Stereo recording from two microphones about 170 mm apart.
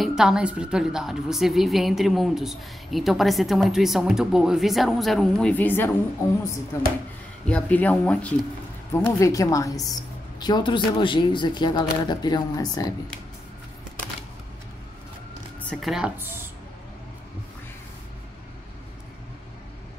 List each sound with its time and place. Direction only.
0.0 s a woman's voice: 5° right (ahead or behind)
9.0 s speech: 20° left (ahead or behind)
15.6 s speech: centre (ahead or behind)
16.2 s speech: 15° right (ahead or behind)